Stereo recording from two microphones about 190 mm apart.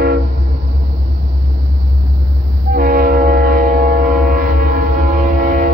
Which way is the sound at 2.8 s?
50° right (ahead or behind).